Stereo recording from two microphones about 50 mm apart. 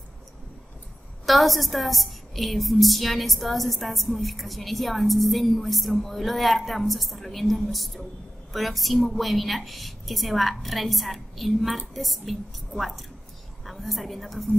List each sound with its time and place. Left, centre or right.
1.2 s a woman's voice: centre